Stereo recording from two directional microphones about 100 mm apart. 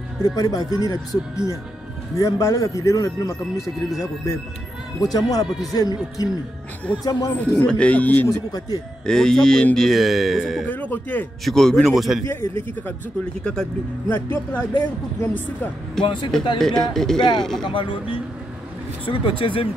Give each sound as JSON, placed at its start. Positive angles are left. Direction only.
{"t": 0.2, "sound": "a man's voice", "side_deg": 40}
{"t": 5.0, "sound": "a man's voice", "side_deg": 40}
{"t": 7.5, "sound": "speech", "side_deg": 10}
{"t": 8.3, "sound": "a man's voice", "side_deg": 40}
{"t": 9.0, "sound": "speech", "side_deg": 5}
{"t": 10.7, "sound": "speech", "side_deg": 15}
{"t": 11.4, "sound": "speech", "side_deg": 5}
{"t": 12.3, "sound": "speech", "side_deg": 25}
{"t": 13.4, "sound": "speech", "side_deg": 10}
{"t": 14.1, "sound": "speech", "side_deg": 20}
{"t": 16.0, "sound": "speech", "side_deg": 50}
{"t": 16.5, "sound": "speech", "side_deg": 5}
{"t": 17.6, "sound": "speech", "side_deg": 60}